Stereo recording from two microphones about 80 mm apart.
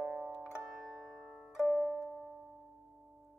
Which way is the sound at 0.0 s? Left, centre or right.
Centre.